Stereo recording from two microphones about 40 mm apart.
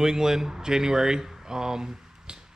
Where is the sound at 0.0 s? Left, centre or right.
Centre.